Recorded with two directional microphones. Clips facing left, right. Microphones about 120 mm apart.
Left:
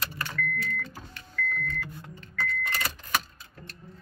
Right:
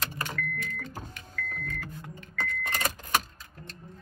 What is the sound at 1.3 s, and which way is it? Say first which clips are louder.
Vehicle: left 5 dB; 45° right (ahead or behind).